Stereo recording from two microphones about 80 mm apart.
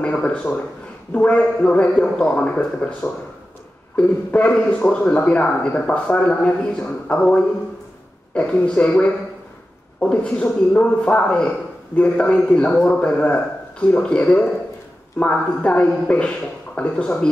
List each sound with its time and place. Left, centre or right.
0.0 s a man's voice: centre